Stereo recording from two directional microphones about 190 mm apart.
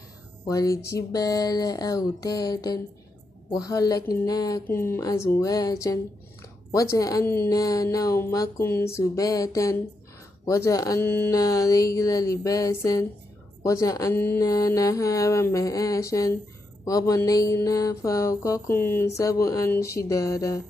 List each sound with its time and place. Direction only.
0.5 s a woman's voice: 15° left (ahead or behind)
0.8 s a sound: 20° left (ahead or behind)
4.2 s a woman's voice: 20° left (ahead or behind)